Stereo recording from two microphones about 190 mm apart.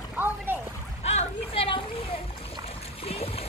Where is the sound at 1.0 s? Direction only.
30° left (ahead or behind).